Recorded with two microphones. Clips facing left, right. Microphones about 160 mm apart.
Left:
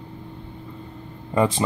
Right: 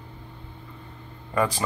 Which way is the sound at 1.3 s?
25° left (ahead or behind).